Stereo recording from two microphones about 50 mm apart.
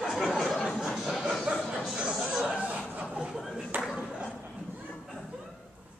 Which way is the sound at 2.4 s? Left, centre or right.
Right.